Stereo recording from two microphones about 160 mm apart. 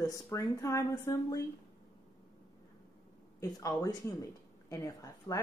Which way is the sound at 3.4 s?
20° left (ahead or behind).